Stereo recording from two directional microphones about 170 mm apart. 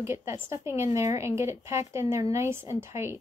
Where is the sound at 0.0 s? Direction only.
15° right (ahead or behind).